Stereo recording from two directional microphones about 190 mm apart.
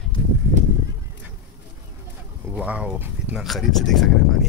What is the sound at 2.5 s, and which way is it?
Speech, 5° right (ahead or behind).